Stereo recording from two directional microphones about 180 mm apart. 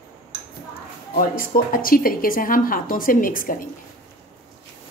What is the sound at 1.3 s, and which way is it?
A woman's voice, 50° left (ahead or behind).